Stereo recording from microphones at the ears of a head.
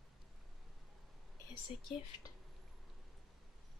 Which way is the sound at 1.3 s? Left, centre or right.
Left.